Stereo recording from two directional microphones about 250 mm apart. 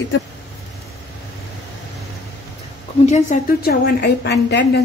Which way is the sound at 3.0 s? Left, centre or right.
Left.